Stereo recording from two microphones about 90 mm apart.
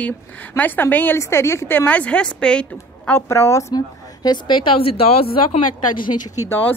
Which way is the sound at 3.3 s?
35° left (ahead or behind).